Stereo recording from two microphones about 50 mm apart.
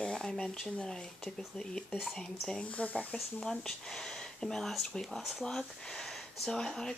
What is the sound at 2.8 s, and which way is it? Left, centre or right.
Speech, left.